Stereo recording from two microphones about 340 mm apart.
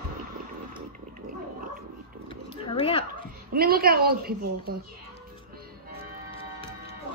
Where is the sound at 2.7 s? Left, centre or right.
Centre.